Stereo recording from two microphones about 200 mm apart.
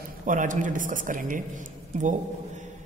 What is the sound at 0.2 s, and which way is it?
A woman's voice, 40° right (ahead or behind).